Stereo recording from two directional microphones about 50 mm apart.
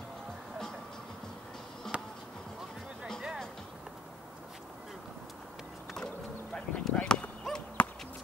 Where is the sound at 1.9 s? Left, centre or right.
Right.